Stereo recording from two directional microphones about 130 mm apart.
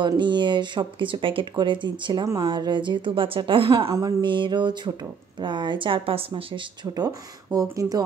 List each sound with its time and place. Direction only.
0.2 s speech: 35° right (ahead or behind)
3.9 s speech: 35° right (ahead or behind)